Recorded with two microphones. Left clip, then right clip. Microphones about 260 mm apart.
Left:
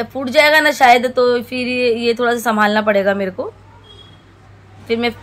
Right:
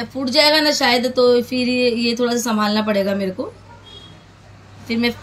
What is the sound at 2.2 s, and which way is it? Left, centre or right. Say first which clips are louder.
Speech: left 3 dB; left.